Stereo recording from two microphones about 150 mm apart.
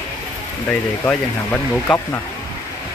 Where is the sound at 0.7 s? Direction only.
10° left (ahead or behind).